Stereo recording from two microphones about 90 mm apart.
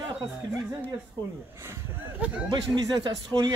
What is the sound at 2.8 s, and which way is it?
Speech, 45° right (ahead or behind).